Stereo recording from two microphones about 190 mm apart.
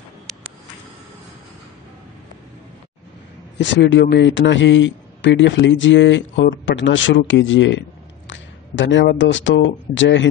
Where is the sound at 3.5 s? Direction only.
65° left (ahead or behind).